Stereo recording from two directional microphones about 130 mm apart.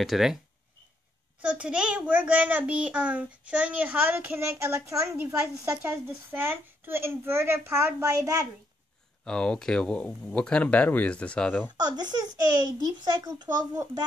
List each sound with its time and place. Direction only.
0.0 s speech: centre (ahead or behind)
1.4 s a child's voice: 10° right (ahead or behind); by 8.5 s 25° right (ahead or behind)
9.2 s speech: 5° left (ahead or behind)
11.7 s a child's voice: 30° right (ahead or behind)